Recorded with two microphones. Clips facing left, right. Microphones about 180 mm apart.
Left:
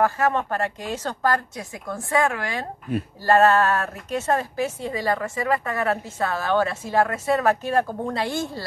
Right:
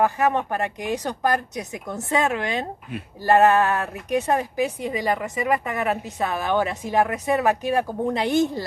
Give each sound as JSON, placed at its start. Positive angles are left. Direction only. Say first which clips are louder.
{"t": 0.0, "sound": "a woman's voice", "louder": "right 1 dB", "side_deg": -15}